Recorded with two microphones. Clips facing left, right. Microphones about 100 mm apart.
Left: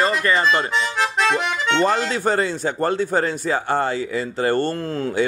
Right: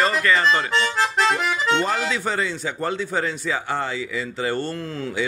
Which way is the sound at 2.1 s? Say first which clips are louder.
Left 4 dB; 50° left (ahead or behind).